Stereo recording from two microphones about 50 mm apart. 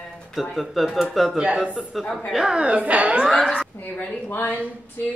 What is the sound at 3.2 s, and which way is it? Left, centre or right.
Speech, centre.